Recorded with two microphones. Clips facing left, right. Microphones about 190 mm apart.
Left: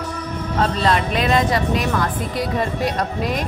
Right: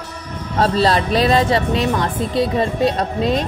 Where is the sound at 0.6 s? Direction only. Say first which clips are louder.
Right 4 dB; 35° right (ahead or behind).